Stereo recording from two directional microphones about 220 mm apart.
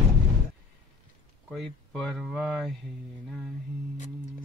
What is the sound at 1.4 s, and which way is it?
Speech, centre (ahead or behind).